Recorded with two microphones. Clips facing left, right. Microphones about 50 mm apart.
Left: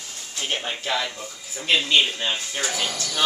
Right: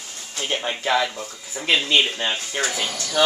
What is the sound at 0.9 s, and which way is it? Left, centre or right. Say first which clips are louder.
Speech: right 6 dB; centre.